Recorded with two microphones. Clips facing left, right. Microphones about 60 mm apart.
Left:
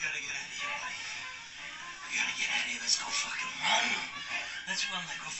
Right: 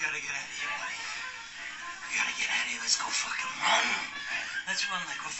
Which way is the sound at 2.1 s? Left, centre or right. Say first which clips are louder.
Right 2 dB; right.